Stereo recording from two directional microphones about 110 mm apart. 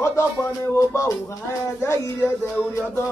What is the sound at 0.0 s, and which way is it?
Music, 25° left (ahead or behind).